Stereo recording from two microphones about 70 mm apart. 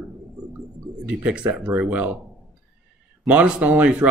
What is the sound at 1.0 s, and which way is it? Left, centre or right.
Speech, centre.